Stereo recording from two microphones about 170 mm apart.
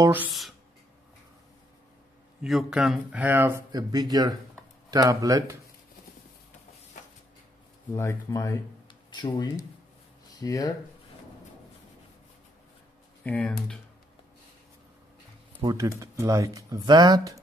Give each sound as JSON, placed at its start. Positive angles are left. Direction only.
{"t": 0.0, "sound": "speech", "side_deg": -10}
{"t": 0.3, "sound": "speech", "side_deg": 0}
{"t": 2.4, "sound": "speech", "side_deg": 0}
{"t": 7.9, "sound": "speech", "side_deg": 20}
{"t": 13.2, "sound": "speech", "side_deg": 10}
{"t": 15.6, "sound": "speech", "side_deg": -20}